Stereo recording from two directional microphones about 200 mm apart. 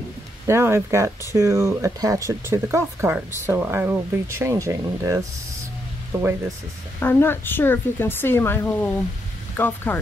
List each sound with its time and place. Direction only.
0.5 s speech: 10° right (ahead or behind)
7.0 s speech: 10° left (ahead or behind)